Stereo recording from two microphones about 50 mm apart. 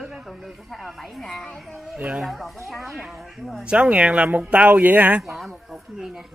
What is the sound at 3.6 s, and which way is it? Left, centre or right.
Speech, right.